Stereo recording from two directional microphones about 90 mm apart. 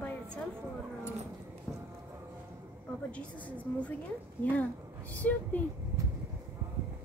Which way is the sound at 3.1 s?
15° left (ahead or behind).